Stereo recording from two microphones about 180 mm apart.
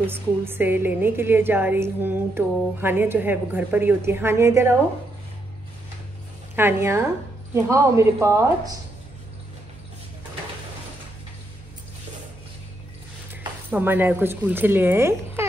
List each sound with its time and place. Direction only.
0.0 s a woman's voice: 10° right (ahead or behind)
6.5 s a woman's voice: 10° right (ahead or behind)
13.3 s speech: 10° right (ahead or behind)